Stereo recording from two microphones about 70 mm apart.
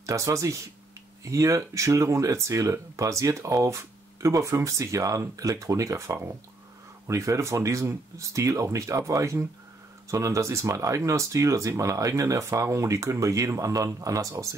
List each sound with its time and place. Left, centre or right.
0.0 s speech: right